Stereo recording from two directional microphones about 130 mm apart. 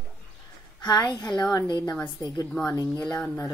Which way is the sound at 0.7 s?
35° left (ahead or behind).